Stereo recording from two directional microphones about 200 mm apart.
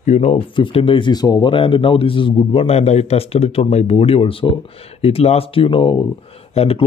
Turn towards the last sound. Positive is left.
turn(degrees=30)  # may be behind; listen again after turning